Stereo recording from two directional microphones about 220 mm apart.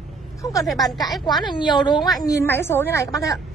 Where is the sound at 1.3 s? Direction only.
20° left (ahead or behind).